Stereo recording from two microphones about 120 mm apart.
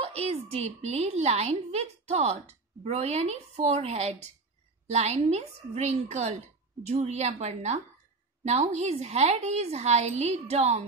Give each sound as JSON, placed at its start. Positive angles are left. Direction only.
{"t": 0.0, "sound": "a woman's voice", "side_deg": -60}